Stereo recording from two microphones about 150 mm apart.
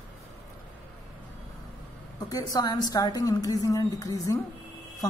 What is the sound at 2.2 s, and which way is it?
A woman's voice, 25° left (ahead or behind).